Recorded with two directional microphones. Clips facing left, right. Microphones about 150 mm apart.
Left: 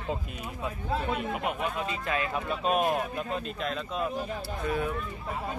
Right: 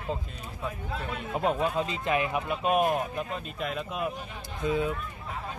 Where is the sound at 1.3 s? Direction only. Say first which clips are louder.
Right 4 dB; 30° right (ahead or behind).